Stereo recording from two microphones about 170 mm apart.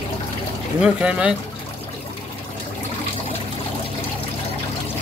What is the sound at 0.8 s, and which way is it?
Speech, 5° right (ahead or behind).